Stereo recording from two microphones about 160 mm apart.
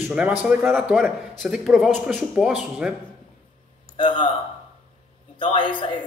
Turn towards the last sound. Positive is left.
turn(degrees=30)  # may be behind; listen again after turning